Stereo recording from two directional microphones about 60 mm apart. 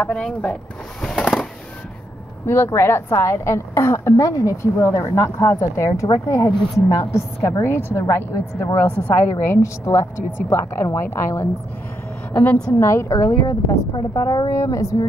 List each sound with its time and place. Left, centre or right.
0.0 s speech: centre
2.4 s a woman's voice: left
8.7 s a woman's voice: left
9.2 s a woman's voice: left
12.7 s a woman's voice: left
13.1 s a woman's voice: left